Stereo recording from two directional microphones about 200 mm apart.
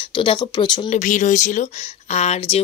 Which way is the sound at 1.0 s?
40° left (ahead or behind).